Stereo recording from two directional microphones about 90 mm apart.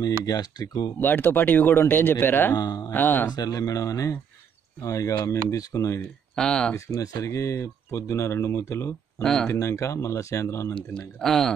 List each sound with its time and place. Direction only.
0.2 s speech: 45° left (ahead or behind)
0.9 s speech: 20° left (ahead or behind)
2.5 s speech: 45° left (ahead or behind)
2.9 s speech: 20° left (ahead or behind)
3.3 s speech: 45° left (ahead or behind)
6.3 s speech: 10° left (ahead or behind)
6.7 s speech: 40° left (ahead or behind)
9.2 s speech: 10° left (ahead or behind)
9.5 s speech: 35° left (ahead or behind)
10.7 s speech: 10° left (ahead or behind)